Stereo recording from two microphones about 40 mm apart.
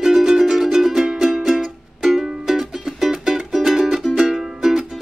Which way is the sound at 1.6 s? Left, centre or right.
Centre.